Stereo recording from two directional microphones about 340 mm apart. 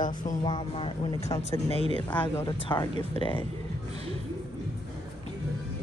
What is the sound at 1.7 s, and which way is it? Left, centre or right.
Speech, centre.